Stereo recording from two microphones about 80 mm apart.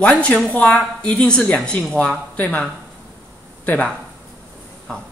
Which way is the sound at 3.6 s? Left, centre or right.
Centre.